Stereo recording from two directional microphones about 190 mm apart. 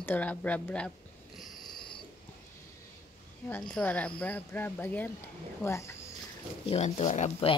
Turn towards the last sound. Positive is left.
turn(degrees=30)  # may be behind; listen again after turning